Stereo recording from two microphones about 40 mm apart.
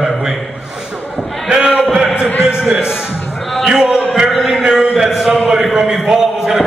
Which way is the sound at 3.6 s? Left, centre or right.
Centre.